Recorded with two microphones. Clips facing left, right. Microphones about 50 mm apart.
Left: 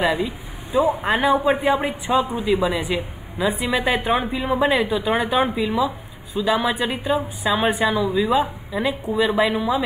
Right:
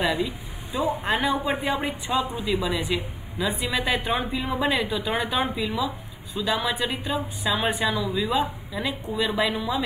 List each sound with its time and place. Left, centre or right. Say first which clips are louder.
0.0 s speech: left 4 dB; centre
5.8 s speech: left 6 dB; centre
6.4 s speech: left 5 dB; centre
7.9 s speech: left 6 dB; centre